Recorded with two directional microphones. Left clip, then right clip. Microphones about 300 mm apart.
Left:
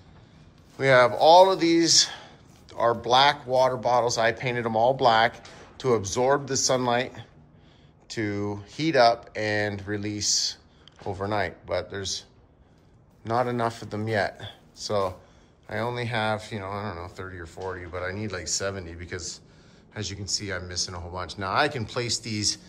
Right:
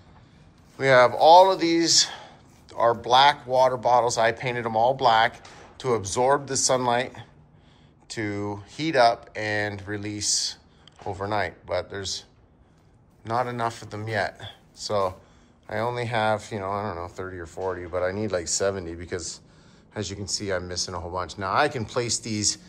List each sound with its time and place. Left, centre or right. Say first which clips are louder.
0.7 s speech: right 1 dB; centre